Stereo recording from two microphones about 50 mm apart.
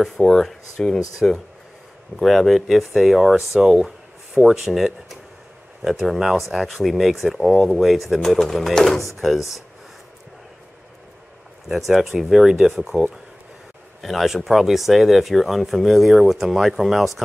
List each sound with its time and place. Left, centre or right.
0.0 s speech: centre
11.7 s speech: centre
12.9 s speech: right
14.0 s speech: centre